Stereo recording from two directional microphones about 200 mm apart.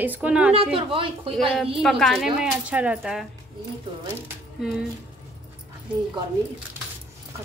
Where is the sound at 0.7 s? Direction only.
25° right (ahead or behind).